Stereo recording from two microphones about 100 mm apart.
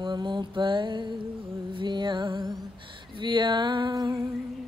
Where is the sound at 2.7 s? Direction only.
55° right (ahead or behind).